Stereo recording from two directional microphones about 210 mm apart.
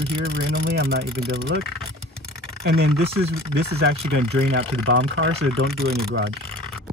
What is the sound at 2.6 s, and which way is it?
Speech, 45° right (ahead or behind).